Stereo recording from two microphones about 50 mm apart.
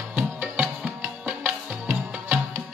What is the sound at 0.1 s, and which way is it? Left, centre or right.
Music, right.